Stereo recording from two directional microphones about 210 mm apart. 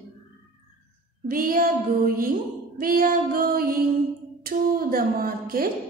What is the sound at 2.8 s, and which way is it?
Music, 45° right (ahead or behind).